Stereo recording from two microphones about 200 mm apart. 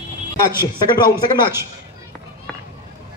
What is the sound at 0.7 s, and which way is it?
Speech, 20° left (ahead or behind).